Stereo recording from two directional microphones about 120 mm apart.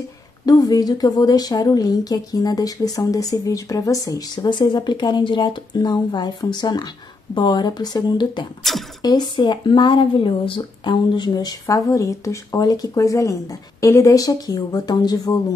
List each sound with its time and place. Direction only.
0.5 s a woman's voice: 30° left (ahead or behind)
8.7 s speech: centre (ahead or behind)
9.0 s a woman's voice: 35° left (ahead or behind)